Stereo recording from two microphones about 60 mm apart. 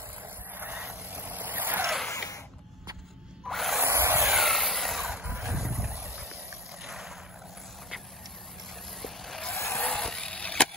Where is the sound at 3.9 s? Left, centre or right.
Right.